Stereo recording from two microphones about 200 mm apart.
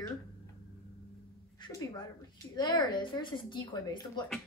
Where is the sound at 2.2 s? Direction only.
20° left (ahead or behind).